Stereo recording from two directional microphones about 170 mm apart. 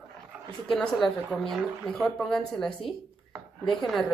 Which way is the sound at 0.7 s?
Centre (ahead or behind).